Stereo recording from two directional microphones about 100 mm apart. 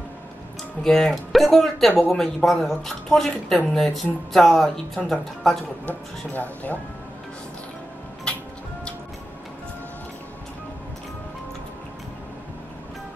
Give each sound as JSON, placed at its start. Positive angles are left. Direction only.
{"t": 0.8, "sound": "speech", "side_deg": 5}
{"t": 5.9, "sound": "speech", "side_deg": 15}